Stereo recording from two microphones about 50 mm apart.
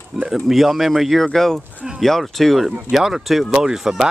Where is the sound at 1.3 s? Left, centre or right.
Centre.